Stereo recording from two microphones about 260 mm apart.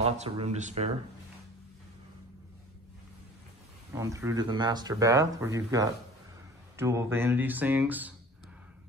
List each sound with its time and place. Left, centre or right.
0.0 s speech: right
3.9 s speech: centre